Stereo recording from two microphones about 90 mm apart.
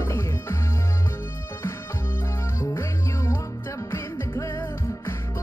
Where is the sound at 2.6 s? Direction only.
30° left (ahead or behind).